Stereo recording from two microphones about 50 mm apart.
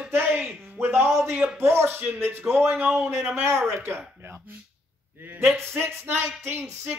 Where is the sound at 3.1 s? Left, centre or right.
Right.